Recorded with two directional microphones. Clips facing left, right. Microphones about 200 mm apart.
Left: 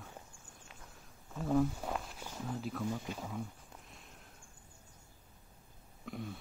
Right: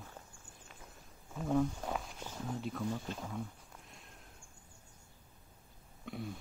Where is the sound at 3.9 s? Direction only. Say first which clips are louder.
Even; centre (ahead or behind).